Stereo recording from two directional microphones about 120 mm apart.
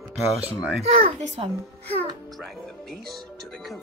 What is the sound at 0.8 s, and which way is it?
Speech, 55° right (ahead or behind).